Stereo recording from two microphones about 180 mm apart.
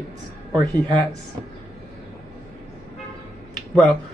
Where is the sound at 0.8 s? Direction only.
20° right (ahead or behind).